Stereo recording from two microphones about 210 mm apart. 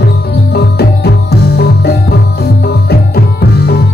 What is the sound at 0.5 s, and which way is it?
Music, 50° left (ahead or behind).